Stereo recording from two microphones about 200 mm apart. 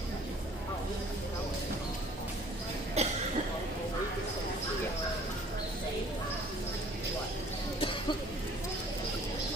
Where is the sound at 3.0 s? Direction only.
30° right (ahead or behind).